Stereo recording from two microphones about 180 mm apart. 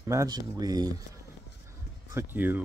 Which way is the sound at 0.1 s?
20° right (ahead or behind).